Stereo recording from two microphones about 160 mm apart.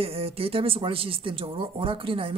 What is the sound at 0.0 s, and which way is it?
Speech, 35° right (ahead or behind).